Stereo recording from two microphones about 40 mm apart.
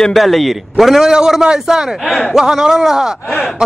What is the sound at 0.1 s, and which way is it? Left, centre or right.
A man's voice, centre.